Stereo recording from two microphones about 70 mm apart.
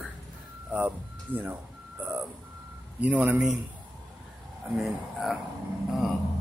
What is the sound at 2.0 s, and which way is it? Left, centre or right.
Reversing beeps, right.